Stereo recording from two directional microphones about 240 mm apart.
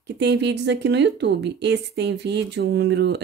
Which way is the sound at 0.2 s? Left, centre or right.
Right.